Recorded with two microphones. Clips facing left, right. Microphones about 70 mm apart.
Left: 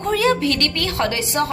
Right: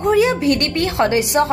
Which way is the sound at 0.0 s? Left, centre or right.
Centre.